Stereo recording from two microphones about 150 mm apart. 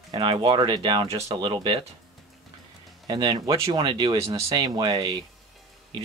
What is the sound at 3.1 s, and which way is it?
Speech, 25° right (ahead or behind).